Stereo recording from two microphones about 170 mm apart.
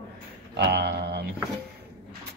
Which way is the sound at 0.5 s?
75° right (ahead or behind).